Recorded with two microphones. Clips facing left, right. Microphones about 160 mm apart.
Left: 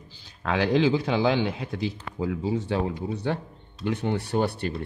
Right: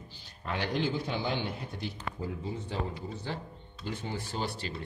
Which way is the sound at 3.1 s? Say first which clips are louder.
Left 9 dB; 70° left (ahead or behind).